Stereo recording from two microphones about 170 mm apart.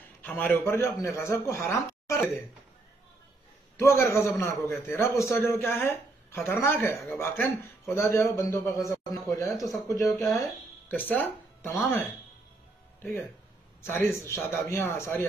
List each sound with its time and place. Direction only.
0.2 s a man's voice: 10° left (ahead or behind)
3.7 s a man's voice: 15° left (ahead or behind)
10.1 s a man's voice: centre (ahead or behind)
13.8 s a man's voice: 15° left (ahead or behind)